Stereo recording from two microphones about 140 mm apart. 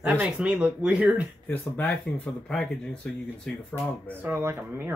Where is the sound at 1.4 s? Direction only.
10° left (ahead or behind).